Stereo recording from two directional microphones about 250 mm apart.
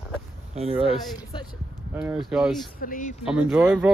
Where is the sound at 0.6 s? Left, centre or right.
Right.